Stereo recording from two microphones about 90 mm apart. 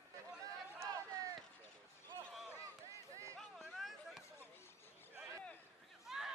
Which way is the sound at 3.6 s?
Centre (ahead or behind).